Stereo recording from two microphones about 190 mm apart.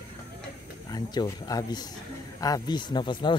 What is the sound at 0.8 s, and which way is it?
Speech, 20° left (ahead or behind).